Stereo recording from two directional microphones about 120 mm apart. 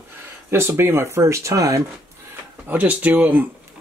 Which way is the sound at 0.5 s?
20° right (ahead or behind).